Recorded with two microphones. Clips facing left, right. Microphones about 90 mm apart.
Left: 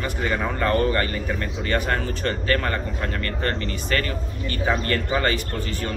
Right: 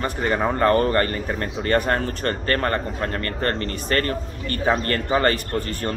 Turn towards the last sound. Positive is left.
turn(degrees=-45)  # may be behind; listen again after turning